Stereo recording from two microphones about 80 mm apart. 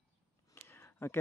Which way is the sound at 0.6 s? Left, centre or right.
Left.